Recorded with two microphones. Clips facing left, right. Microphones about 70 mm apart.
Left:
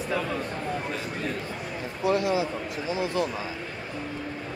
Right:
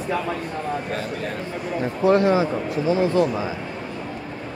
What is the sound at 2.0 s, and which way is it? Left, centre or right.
Speech, right.